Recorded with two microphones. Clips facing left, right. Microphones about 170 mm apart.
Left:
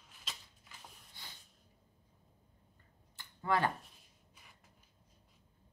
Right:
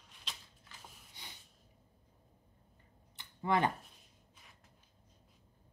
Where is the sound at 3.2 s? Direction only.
20° right (ahead or behind).